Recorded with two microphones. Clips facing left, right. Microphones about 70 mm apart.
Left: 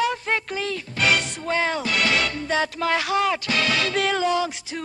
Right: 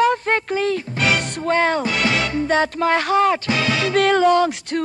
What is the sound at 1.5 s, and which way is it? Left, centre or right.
Speech, right.